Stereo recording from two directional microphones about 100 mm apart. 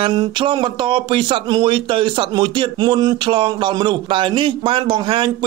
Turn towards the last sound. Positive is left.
turn(degrees=-55)  # may be behind; listen again after turning